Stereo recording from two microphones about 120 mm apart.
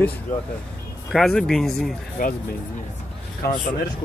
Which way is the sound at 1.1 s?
5° left (ahead or behind).